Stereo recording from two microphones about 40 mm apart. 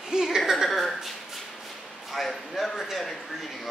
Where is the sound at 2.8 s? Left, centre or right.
Centre.